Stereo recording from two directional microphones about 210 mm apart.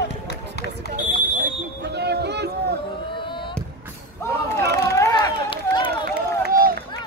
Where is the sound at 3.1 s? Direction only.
25° left (ahead or behind).